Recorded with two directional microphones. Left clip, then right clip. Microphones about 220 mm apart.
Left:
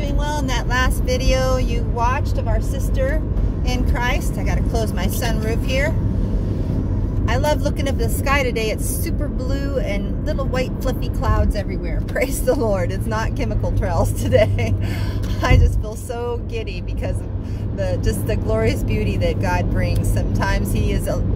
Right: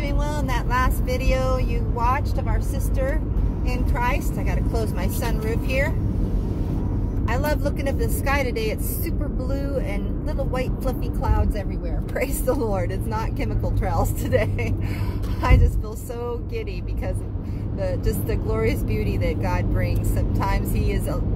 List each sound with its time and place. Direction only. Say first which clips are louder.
0.2 s vehicle: left 6 dB; 15° left (ahead or behind)
2.0 s speech: left 2 dB; 10° left (ahead or behind)
3.9 s speech: even; 15° left (ahead or behind)
7.2 s speech: left 5 dB; 10° left (ahead or behind)
17.7 s speech: left 3 dB; 10° left (ahead or behind)